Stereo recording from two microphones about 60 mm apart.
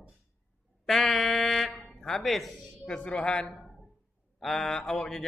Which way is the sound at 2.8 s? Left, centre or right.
Centre.